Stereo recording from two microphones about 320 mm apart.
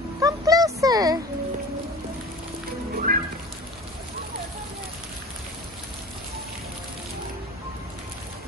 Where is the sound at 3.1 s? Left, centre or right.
Right.